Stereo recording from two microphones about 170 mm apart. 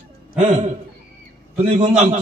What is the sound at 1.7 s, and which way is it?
Speech, 45° right (ahead or behind).